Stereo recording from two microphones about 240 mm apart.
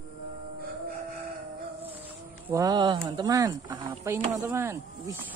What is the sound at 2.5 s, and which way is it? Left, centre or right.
Speech, centre.